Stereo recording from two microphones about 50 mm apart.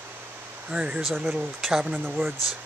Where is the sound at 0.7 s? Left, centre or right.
Right.